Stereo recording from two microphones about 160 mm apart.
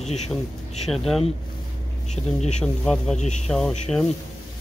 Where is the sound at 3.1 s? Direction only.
45° left (ahead or behind).